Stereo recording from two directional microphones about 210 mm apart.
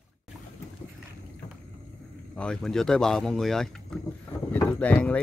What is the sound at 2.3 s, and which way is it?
Speech, 5° left (ahead or behind).